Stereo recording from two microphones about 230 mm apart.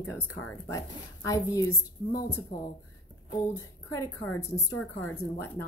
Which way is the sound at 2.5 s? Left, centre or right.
Left.